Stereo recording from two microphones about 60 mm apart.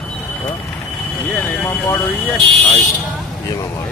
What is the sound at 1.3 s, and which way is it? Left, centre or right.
Speech, left.